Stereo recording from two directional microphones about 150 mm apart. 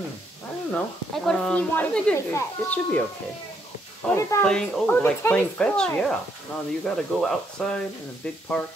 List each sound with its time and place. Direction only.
0.7 s speech: 5° left (ahead or behind)
4.1 s speech: 20° left (ahead or behind)
4.5 s speech: 5° left (ahead or behind)